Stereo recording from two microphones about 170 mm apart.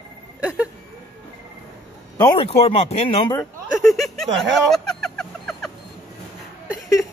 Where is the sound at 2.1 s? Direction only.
25° left (ahead or behind).